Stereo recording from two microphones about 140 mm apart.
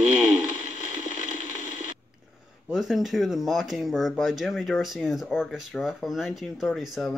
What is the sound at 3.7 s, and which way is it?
Speech, centre (ahead or behind).